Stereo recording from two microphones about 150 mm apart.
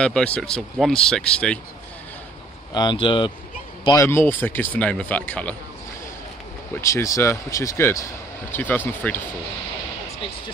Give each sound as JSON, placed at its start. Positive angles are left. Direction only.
{"t": 0.0, "sound": "speech", "side_deg": 5}
{"t": 2.7, "sound": "speech", "side_deg": 30}
{"t": 3.8, "sound": "speech", "side_deg": 20}
{"t": 6.8, "sound": "speech", "side_deg": 20}